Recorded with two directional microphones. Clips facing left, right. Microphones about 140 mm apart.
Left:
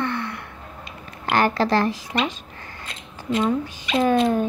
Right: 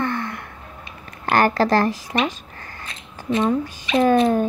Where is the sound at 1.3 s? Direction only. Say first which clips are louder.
Right 2 dB; 45° right (ahead or behind).